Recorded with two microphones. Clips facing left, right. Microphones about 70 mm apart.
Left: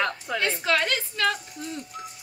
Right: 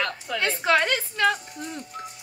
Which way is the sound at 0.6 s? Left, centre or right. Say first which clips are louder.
Right 6 dB; centre.